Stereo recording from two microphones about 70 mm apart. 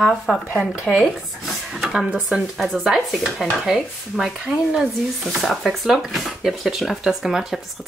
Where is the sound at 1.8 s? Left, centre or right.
Centre.